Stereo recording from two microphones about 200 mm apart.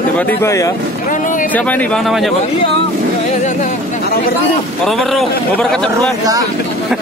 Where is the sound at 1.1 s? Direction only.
40° left (ahead or behind).